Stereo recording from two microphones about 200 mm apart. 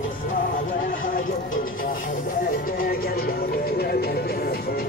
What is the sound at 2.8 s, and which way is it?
Music, 50° left (ahead or behind).